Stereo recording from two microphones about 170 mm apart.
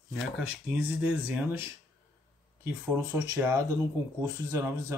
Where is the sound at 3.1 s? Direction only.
15° right (ahead or behind).